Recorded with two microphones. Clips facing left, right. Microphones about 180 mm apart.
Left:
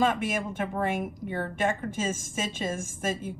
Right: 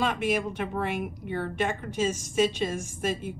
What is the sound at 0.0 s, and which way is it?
Speech, 45° left (ahead or behind).